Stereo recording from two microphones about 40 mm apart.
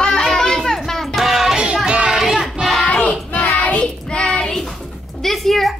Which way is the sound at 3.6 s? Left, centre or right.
Left.